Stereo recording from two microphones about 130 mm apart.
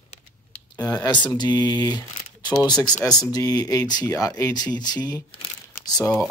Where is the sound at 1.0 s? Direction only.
35° left (ahead or behind).